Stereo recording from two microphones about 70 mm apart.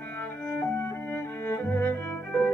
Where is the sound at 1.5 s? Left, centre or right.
Left.